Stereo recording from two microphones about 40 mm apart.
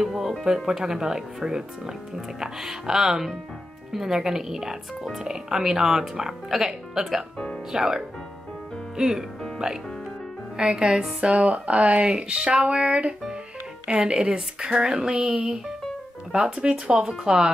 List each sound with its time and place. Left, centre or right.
0.0 s speech: centre
10.6 s speech: right
15.0 s speech: right
16.5 s speech: right